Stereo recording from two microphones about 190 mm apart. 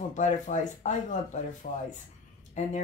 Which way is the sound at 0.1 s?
40° left (ahead or behind).